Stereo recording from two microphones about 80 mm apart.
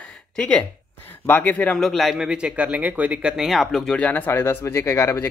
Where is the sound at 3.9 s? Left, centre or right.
Left.